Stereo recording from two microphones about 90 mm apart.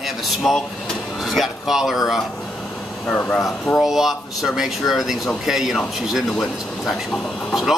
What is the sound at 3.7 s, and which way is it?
Speech, 5° right (ahead or behind).